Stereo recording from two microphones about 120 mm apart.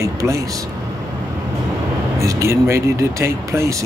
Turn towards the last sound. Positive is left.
turn(degrees=-25)  # may be behind; listen again after turning